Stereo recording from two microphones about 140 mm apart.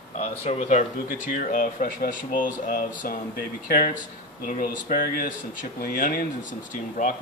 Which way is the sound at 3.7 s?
90° left.